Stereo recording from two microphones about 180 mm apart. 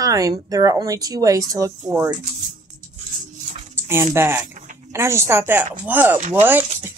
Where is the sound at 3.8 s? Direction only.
15° right (ahead or behind).